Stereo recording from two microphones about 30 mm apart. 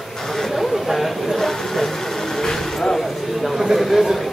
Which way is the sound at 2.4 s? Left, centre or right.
Centre.